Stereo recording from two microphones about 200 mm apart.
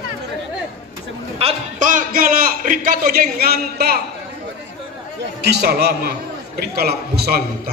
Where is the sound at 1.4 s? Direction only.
40° right (ahead or behind).